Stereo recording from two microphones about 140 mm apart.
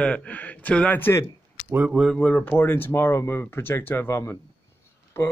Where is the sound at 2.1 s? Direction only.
10° left (ahead or behind).